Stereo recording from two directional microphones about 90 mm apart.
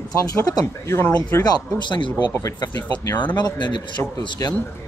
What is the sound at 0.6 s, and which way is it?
Speech, 30° left (ahead or behind).